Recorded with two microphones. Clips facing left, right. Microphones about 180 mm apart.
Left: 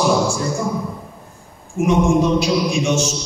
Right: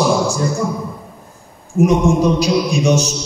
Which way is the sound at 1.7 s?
40° right (ahead or behind).